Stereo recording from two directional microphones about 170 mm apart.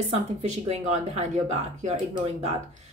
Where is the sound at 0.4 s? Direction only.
40° right (ahead or behind).